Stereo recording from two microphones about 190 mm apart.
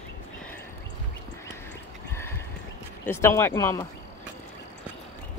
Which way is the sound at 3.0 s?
15° left (ahead or behind).